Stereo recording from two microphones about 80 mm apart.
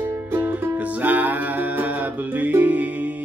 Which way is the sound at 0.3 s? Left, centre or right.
Right.